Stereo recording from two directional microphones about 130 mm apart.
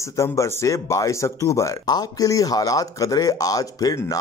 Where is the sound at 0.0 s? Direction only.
25° left (ahead or behind).